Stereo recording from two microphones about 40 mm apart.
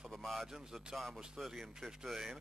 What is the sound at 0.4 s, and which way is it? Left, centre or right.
Speech, centre.